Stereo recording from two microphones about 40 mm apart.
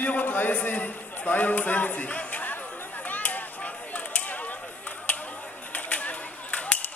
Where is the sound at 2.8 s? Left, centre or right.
Left.